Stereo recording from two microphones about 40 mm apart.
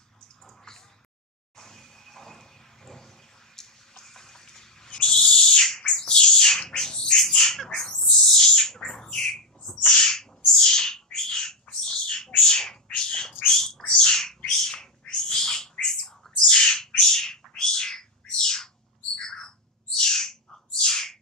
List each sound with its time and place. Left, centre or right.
1.6 s vehicle: centre
3.5 s owl: centre
8.1 s bird: centre
11.7 s squawk: centre
12.4 s a sound: centre
14.0 s bird: centre
16.0 s a sound: left
16.8 s bird: centre